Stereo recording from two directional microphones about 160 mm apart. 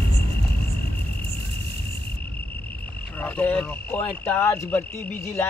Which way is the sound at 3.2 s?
10° left (ahead or behind).